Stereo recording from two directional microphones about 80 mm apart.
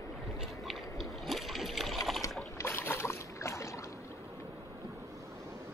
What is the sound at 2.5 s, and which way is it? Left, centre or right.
Boat, left.